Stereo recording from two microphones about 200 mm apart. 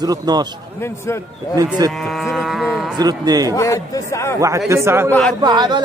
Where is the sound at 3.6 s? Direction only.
15° left (ahead or behind).